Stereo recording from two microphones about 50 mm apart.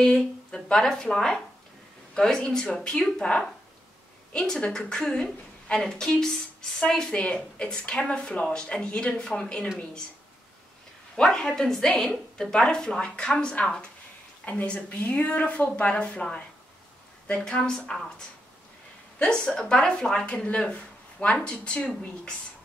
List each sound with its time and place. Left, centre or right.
0.0 s a woman's voice: centre
4.6 s a woman's voice: centre
7.1 s a woman's voice: left
11.1 s a woman's voice: centre
13.6 s a woman's voice: left; by 18.0 s centre
19.2 s a woman's voice: centre
20.2 s speech: left